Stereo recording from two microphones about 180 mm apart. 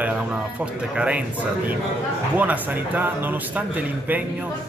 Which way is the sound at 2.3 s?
10° right (ahead or behind).